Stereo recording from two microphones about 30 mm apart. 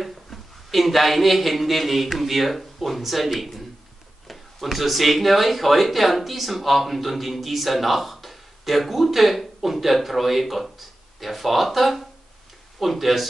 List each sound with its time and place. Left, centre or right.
0.0 s speech: centre